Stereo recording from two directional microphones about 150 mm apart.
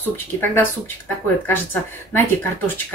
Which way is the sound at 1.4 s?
15° left (ahead or behind).